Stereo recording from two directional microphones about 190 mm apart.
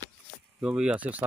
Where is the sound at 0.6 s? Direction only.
5° right (ahead or behind).